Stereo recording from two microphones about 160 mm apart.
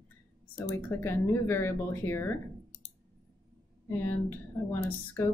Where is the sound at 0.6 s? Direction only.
15° left (ahead or behind).